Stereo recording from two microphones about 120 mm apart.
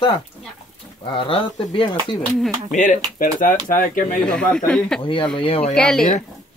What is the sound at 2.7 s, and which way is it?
Speech, 90° left.